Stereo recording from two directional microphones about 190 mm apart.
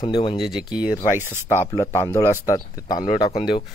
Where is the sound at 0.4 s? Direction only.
5° right (ahead or behind).